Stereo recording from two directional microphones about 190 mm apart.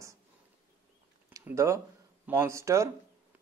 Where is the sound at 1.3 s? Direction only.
15° right (ahead or behind).